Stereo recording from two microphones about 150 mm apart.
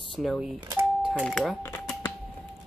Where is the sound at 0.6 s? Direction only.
15° right (ahead or behind).